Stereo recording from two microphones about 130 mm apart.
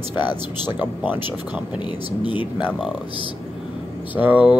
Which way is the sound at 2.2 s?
40° left (ahead or behind).